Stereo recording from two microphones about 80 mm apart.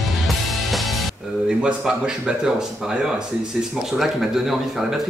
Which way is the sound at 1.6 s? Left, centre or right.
Centre.